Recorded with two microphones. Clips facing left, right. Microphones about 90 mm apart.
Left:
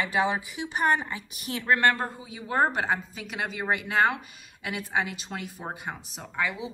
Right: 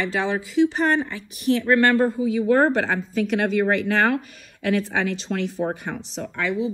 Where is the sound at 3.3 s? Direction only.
5° left (ahead or behind).